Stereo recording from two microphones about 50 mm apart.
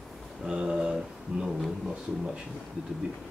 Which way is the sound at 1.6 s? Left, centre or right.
Centre.